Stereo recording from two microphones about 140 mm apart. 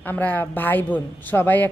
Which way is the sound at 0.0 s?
15° left (ahead or behind).